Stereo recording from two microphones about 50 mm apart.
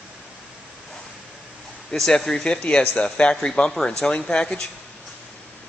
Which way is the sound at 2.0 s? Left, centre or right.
Centre.